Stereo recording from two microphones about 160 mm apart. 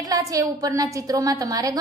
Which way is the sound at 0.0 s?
20° right (ahead or behind).